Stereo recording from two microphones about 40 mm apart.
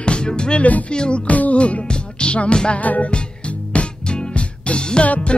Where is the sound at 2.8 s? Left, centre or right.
Left.